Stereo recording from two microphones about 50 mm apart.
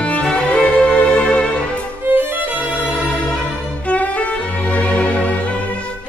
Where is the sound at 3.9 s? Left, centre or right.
Left.